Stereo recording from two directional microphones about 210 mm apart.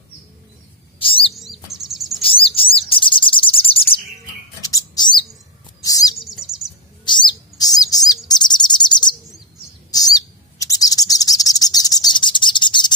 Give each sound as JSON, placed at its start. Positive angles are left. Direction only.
{"t": 0.9, "sound": "bird", "side_deg": 25}
{"t": 1.3, "sound": "chirp", "side_deg": 0}
{"t": 2.2, "sound": "bird", "side_deg": 25}
{"t": 4.6, "sound": "bird", "side_deg": 15}
{"t": 6.2, "sound": "bird", "side_deg": 0}
{"t": 7.1, "sound": "bird", "side_deg": 20}